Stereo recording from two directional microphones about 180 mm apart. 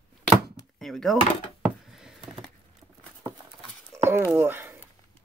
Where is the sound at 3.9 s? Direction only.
15° right (ahead or behind).